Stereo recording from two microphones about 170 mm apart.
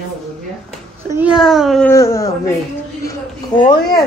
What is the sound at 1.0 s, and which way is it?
Speech, 10° right (ahead or behind).